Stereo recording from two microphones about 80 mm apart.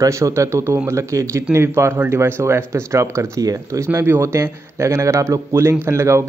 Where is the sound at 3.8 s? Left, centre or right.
Right.